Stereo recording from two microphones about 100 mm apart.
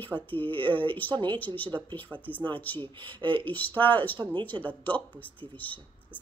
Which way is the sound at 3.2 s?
55° right (ahead or behind).